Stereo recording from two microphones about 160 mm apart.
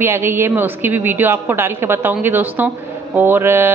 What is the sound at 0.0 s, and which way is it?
A woman's voice, 15° right (ahead or behind).